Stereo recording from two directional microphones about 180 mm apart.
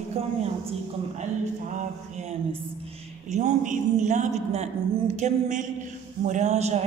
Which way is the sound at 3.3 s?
40° right (ahead or behind).